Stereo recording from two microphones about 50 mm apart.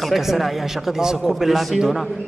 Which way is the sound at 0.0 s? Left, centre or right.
Centre.